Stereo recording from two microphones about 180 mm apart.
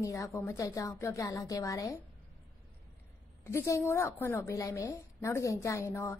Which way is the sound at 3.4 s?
15° left (ahead or behind).